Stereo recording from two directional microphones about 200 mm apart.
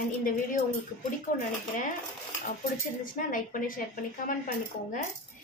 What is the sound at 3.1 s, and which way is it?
A woman's voice, 45° left (ahead or behind).